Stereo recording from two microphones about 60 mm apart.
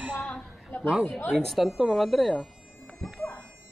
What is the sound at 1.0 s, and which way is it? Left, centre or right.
Speech, left.